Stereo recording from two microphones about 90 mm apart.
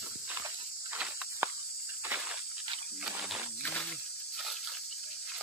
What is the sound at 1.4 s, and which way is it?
Cricket, 25° right (ahead or behind).